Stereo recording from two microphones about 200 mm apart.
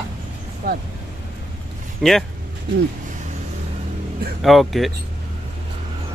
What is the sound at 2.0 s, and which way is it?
Speech, centre (ahead or behind).